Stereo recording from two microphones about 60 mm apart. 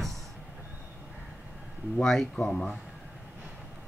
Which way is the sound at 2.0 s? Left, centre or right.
Centre.